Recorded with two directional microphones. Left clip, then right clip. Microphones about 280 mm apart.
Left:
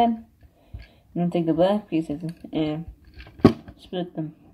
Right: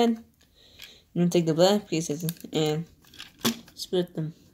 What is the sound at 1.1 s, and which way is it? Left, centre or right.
Speech, right.